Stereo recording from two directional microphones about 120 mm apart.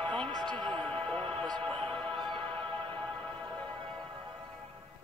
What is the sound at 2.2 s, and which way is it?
Music, 45° right (ahead or behind).